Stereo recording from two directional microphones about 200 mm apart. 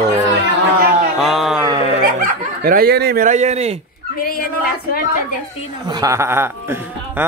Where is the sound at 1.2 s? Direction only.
Centre (ahead or behind).